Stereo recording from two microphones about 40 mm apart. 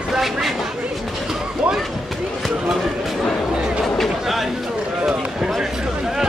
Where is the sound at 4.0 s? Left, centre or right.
Centre.